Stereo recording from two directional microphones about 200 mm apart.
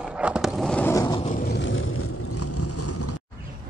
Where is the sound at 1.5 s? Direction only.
65° left (ahead or behind).